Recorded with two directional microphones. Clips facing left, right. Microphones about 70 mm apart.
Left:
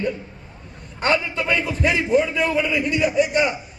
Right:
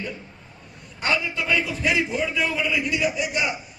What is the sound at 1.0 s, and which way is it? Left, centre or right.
A man's voice, left.